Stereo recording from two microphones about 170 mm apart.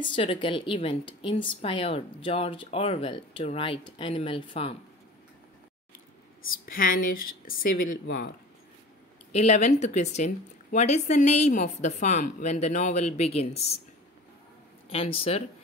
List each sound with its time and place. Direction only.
0.0 s speech: 30° left (ahead or behind)
6.6 s speech: 55° left (ahead or behind)
9.3 s speech: 40° left (ahead or behind)
14.9 s speech: 35° left (ahead or behind)